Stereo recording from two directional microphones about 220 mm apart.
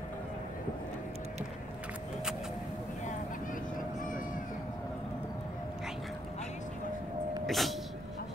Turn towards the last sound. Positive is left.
turn(degrees=0)  # may be behind; listen again after turning